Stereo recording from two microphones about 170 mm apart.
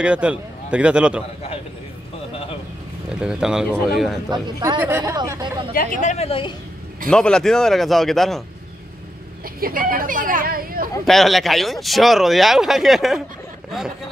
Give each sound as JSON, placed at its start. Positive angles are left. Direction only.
{"t": 0.0, "sound": "a man's voice", "side_deg": -5}
{"t": 3.2, "sound": "speech", "side_deg": -5}
{"t": 4.3, "sound": "a man's voice", "side_deg": -25}
{"t": 5.7, "sound": "speech", "side_deg": 55}
{"t": 7.1, "sound": "speech", "side_deg": 5}
{"t": 9.6, "sound": "speech", "side_deg": -55}
{"t": 11.1, "sound": "speech", "side_deg": 0}